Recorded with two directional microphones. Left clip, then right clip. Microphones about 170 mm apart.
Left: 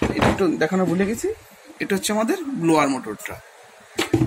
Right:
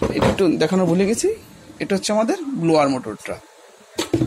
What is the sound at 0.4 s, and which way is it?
Speech, 35° right (ahead or behind).